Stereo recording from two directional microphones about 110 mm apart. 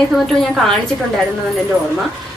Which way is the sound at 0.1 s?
Centre (ahead or behind).